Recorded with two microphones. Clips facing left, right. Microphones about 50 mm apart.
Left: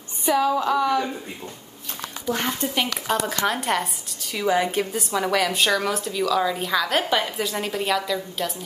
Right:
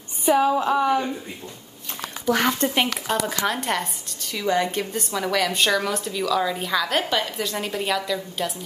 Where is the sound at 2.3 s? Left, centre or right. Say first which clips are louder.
Right 6 dB; right.